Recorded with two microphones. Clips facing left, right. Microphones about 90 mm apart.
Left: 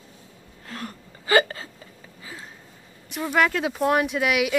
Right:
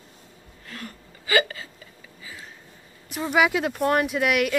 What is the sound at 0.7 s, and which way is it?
Hiccup, 40° left (ahead or behind).